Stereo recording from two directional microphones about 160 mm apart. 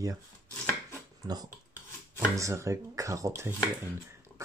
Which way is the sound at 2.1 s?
20° right (ahead or behind).